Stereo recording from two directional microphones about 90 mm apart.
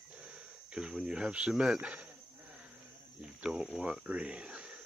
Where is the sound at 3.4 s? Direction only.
5° right (ahead or behind).